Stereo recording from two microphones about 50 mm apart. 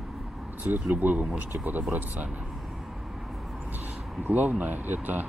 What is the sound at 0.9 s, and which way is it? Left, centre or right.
Speech, right.